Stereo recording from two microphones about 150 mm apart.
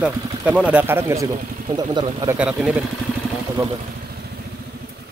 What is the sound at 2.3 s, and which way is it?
Speech, 10° right (ahead or behind).